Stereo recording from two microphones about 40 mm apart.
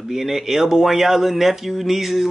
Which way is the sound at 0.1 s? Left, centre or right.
Centre.